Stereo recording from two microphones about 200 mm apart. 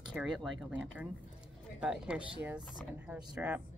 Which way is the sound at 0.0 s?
5° right (ahead or behind).